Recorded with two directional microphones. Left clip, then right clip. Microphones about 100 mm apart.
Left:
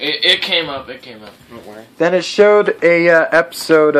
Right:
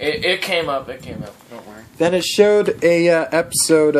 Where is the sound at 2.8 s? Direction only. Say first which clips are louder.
Left 3 dB; 90° right.